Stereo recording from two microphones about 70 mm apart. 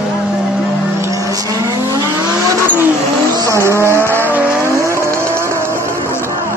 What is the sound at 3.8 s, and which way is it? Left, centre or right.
Vehicle, right.